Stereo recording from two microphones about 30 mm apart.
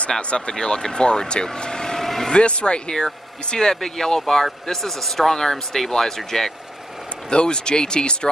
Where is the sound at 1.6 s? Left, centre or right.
Left.